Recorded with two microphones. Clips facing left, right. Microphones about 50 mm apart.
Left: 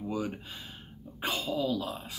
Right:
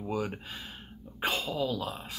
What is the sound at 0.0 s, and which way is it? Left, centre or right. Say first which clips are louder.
Speech: right 1 dB; right.